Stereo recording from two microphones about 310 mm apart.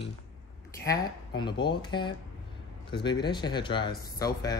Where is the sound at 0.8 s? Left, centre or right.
Centre.